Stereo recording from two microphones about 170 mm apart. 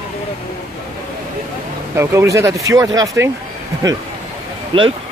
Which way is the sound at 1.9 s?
15° right (ahead or behind).